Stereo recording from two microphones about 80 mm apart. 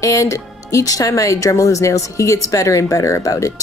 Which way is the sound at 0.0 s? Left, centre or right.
Left.